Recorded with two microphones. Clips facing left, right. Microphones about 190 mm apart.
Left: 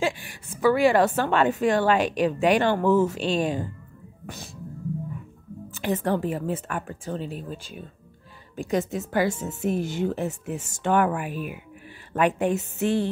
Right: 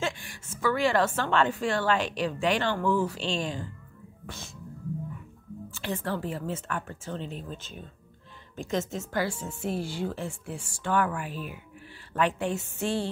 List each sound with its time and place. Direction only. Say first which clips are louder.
0.0 s a woman's voice: left 6 dB; 15° left (ahead or behind)
5.8 s a woman's voice: left 7 dB; 15° left (ahead or behind)